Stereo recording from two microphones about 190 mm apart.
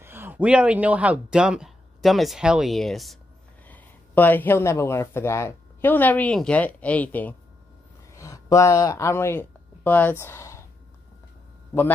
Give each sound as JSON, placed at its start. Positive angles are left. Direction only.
{"t": 0.0, "sound": "speech", "side_deg": -10}